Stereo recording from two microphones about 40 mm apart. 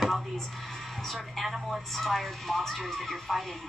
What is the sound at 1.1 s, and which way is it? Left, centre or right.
Speech, centre.